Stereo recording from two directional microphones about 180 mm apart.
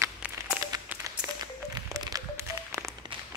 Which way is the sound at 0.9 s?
20° right (ahead or behind).